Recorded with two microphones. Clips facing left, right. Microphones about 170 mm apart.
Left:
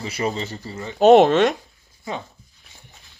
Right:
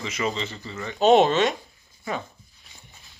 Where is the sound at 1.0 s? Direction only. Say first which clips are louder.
Left 5 dB; 55° left (ahead or behind).